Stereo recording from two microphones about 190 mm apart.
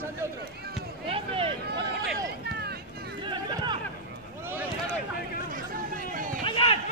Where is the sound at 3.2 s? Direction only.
25° right (ahead or behind).